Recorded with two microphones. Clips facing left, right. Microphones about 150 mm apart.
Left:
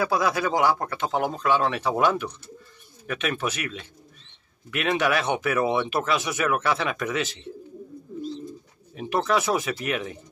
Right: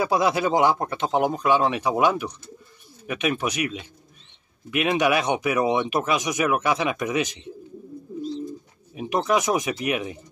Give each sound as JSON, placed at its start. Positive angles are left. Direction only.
{"t": 0.0, "sound": "speech", "side_deg": -20}
{"t": 8.9, "sound": "speech", "side_deg": -15}